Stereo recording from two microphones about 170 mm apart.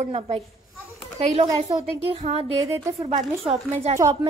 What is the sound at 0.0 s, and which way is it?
A woman's voice, 40° right (ahead or behind).